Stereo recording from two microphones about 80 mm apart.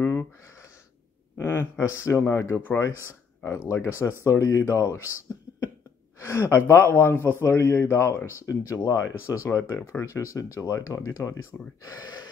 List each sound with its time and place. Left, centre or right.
1.4 s speech: left
6.1 s a man's voice: left
8.5 s speech: left
11.8 s speech: left